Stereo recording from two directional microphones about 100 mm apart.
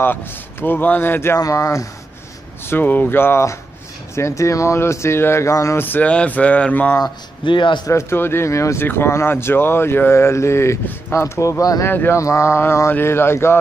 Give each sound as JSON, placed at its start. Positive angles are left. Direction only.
{"t": 0.0, "sound": "speech", "side_deg": 20}
{"t": 1.4, "sound": "speech", "side_deg": 35}
{"t": 2.6, "sound": "speech", "side_deg": 20}
{"t": 5.9, "sound": "speech", "side_deg": 15}
{"t": 7.0, "sound": "speech", "side_deg": 55}
{"t": 7.8, "sound": "speech", "side_deg": 25}
{"t": 11.9, "sound": "speech", "side_deg": 20}
{"t": 12.2, "sound": "speech", "side_deg": 30}